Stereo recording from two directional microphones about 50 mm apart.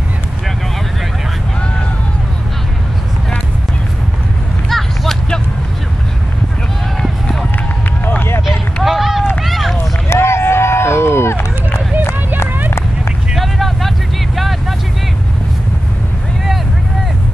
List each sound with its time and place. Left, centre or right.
4.6 s a sound: centre
7.0 s run: centre
8.0 s run: left
8.8 s run: centre
10.0 s run: left
13.3 s vehicle: centre